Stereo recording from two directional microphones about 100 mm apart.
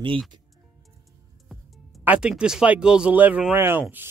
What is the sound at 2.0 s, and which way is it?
Speech, 15° right (ahead or behind).